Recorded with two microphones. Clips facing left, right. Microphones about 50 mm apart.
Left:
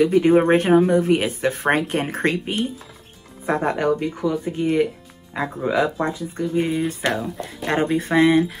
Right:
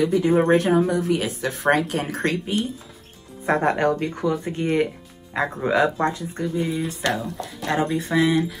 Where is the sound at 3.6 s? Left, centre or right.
Centre.